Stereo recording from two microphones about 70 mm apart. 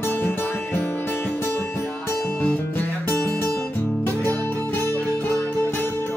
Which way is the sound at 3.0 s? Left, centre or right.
Left.